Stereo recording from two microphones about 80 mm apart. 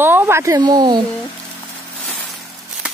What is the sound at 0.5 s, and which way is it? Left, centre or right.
Speech, right.